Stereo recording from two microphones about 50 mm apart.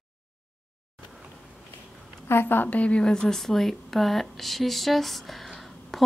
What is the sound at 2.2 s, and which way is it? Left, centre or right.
Speech, left.